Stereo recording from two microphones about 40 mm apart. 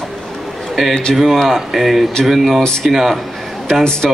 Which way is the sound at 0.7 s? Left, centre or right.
Centre.